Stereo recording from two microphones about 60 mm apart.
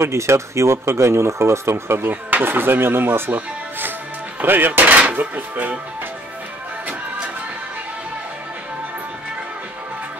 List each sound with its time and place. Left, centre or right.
0.0 s speech: right
2.3 s speech: right